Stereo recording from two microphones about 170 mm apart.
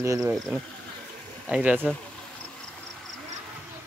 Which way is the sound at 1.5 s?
10° right (ahead or behind).